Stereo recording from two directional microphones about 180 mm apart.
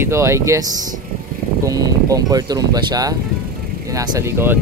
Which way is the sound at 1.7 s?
20° right (ahead or behind).